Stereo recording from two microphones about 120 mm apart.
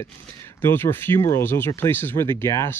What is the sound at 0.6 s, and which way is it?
Speech, 20° left (ahead or behind).